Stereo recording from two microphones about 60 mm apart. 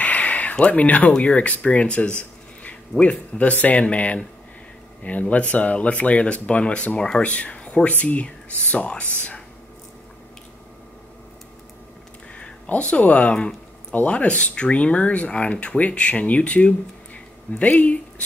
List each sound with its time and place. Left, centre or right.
0.0 s speech: left
12.6 s speech: left